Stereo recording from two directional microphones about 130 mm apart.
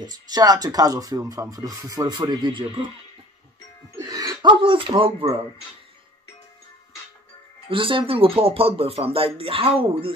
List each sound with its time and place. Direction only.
0.0 s speech: 30° right (ahead or behind)
4.0 s speech: 30° right (ahead or behind)
7.7 s speech: 40° right (ahead or behind)